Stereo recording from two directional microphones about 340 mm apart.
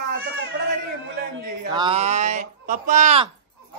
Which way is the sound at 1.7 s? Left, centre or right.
Centre.